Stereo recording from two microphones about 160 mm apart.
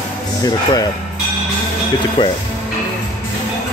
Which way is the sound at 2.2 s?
30° left (ahead or behind).